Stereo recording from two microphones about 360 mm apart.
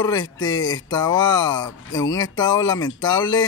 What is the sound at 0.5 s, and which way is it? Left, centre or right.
Speech, centre.